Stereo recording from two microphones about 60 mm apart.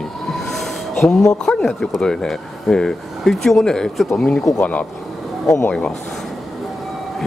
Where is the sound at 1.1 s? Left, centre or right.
Centre.